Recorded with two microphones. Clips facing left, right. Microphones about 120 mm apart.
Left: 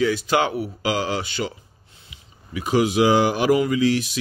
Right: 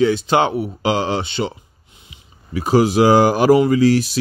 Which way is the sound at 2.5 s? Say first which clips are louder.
Right 5 dB; 40° right (ahead or behind).